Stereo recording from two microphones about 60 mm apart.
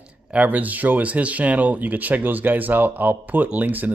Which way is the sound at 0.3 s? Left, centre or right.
Right.